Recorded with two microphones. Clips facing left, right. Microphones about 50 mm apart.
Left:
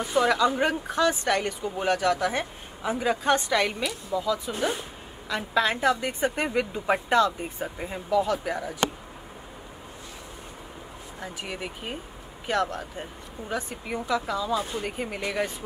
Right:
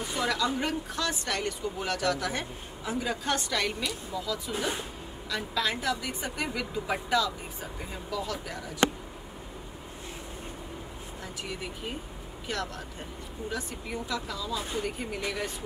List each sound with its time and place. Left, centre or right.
0.1 s a woman's voice: left
5.3 s speech: left
11.4 s speech: left